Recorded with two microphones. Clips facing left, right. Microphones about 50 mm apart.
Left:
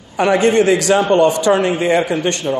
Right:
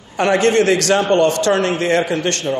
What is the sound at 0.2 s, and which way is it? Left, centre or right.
A man's voice, centre.